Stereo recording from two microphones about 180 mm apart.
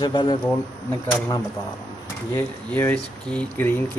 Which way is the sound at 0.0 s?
25° left (ahead or behind).